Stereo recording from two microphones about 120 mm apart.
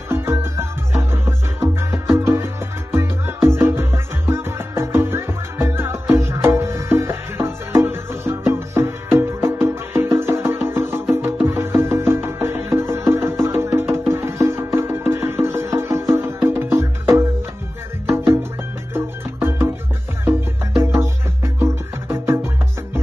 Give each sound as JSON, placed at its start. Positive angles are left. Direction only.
{"t": 0.1, "sound": "music", "side_deg": -20}
{"t": 20.8, "sound": "music", "side_deg": -20}